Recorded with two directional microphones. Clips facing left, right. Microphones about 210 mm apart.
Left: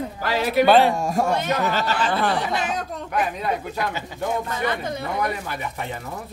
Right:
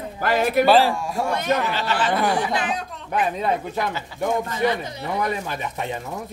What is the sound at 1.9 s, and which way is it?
Speech, 10° right (ahead or behind).